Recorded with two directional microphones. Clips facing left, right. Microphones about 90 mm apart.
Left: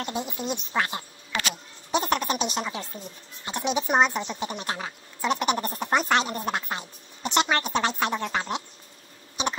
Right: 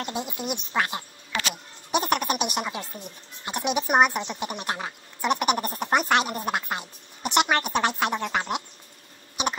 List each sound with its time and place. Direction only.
0.0 s speech: 20° right (ahead or behind)